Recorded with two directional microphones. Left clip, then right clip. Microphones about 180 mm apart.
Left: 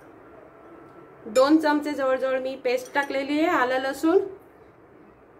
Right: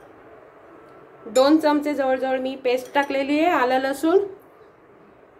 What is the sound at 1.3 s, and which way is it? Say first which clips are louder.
Speech: right 2 dB; 20° right (ahead or behind).